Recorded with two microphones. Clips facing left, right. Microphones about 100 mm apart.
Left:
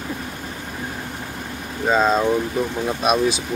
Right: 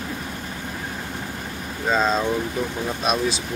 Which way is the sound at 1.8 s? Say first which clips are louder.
Left 3 dB; 10° left (ahead or behind).